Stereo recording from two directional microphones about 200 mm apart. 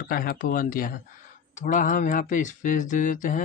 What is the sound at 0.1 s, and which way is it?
Speech, 45° left (ahead or behind).